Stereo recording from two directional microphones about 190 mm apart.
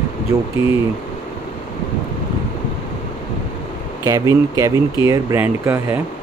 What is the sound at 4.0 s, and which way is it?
Speech, 15° right (ahead or behind).